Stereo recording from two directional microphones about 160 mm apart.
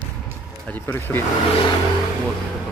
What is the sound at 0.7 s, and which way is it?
Speech, 10° left (ahead or behind).